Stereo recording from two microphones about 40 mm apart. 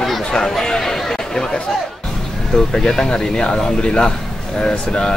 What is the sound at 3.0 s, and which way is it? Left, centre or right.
Speech, centre.